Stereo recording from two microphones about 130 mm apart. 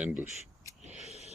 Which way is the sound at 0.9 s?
60° right (ahead or behind).